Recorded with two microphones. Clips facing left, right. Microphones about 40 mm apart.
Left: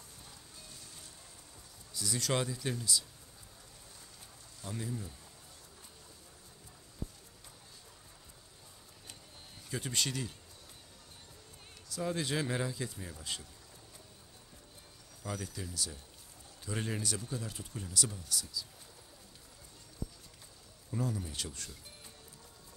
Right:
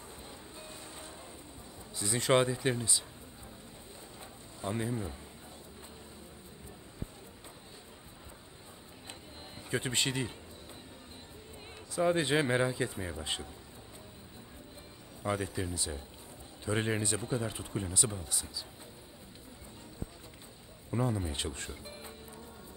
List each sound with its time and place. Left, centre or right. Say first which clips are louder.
0.6 s music: right 7 dB; right
2.0 s speech: right 7 dB; right
4.6 s speech: right 6 dB; right
9.7 s speech: right 4 dB; right
11.9 s speech: right 7 dB; right
15.2 s speech: right 8 dB; right
20.9 s speech: right 4 dB; right